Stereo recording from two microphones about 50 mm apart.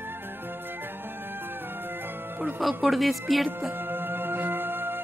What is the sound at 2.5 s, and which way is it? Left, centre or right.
Speech, centre.